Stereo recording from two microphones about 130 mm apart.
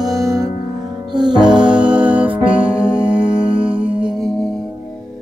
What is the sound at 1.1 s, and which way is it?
Music, 35° right (ahead or behind).